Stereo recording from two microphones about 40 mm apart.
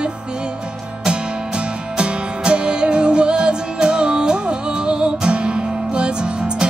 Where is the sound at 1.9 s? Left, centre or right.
Right.